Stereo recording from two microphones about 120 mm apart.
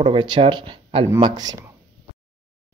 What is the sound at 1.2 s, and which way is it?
Speech, 35° right (ahead or behind).